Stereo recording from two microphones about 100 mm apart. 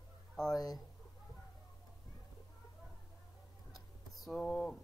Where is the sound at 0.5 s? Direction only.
40° left (ahead or behind).